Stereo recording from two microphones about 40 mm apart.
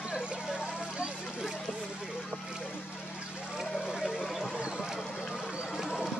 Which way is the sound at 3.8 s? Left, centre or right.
Centre.